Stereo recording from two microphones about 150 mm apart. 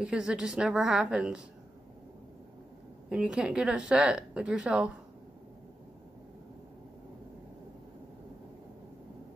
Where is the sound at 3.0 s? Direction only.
5° right (ahead or behind).